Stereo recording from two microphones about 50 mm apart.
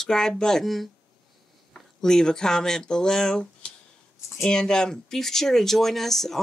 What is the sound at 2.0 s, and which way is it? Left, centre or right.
Speech, centre.